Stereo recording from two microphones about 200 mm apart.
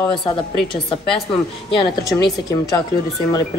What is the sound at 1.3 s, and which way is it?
Speech, 25° left (ahead or behind).